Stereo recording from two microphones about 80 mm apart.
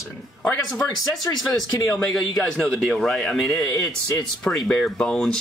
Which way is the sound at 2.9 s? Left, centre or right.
Centre.